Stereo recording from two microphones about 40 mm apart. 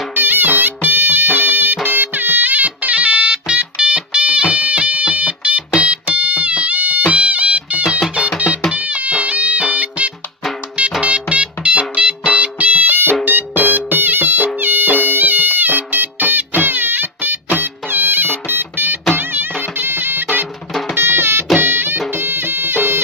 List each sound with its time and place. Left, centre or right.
0.1 s music: right
20.9 s music: right